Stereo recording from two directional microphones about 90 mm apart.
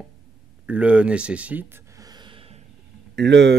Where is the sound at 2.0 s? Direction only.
50° right (ahead or behind).